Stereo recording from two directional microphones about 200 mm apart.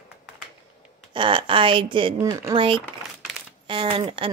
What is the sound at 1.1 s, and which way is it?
Speech, 25° right (ahead or behind).